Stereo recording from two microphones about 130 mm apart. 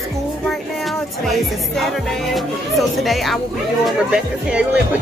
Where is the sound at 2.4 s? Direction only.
Centre (ahead or behind).